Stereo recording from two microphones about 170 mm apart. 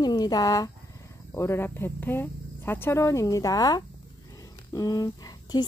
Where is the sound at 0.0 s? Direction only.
25° left (ahead or behind).